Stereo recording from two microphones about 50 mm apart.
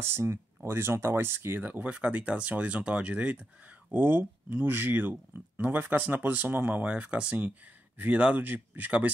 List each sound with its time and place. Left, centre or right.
0.0 s speech: right
1.6 s speech: right
3.9 s speech: right
6.8 s speech: right